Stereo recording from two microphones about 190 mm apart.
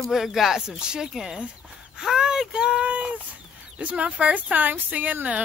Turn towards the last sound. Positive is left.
turn(degrees=-10)  # may be behind; listen again after turning